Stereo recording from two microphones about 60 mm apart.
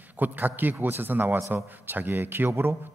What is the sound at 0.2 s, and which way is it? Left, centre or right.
A man's voice, right.